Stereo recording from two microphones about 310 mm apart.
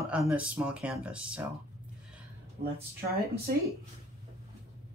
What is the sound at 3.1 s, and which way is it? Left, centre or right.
Speech, right.